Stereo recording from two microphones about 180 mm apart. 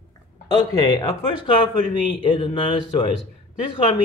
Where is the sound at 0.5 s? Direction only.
25° left (ahead or behind).